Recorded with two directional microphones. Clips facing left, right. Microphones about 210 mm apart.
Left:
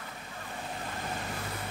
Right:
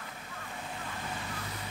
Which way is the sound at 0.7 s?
45° left (ahead or behind).